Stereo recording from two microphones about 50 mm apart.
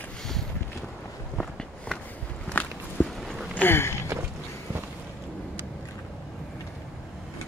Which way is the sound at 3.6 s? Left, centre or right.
Left.